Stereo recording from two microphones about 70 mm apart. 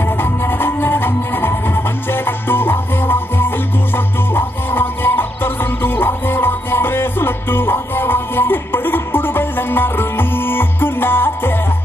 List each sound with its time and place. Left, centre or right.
0.2 s music: left